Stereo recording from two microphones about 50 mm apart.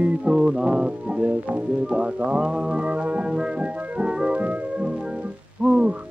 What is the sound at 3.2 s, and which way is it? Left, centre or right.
Music, centre.